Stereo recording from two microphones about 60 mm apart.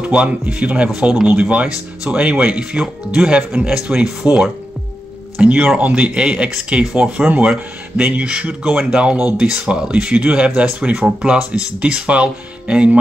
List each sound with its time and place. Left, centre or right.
0.0 s speech: centre